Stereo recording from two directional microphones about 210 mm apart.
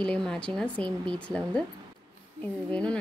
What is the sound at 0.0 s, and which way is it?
Speech, 5° left (ahead or behind).